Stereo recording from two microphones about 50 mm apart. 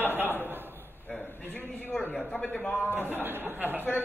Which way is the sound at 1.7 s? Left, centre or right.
Left.